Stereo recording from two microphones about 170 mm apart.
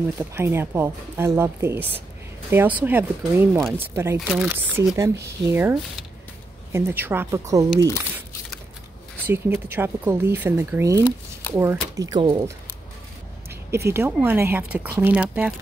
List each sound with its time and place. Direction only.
0.3 s speech: 15° right (ahead or behind)
9.2 s speech: 10° right (ahead or behind)
13.5 s speech: 15° right (ahead or behind)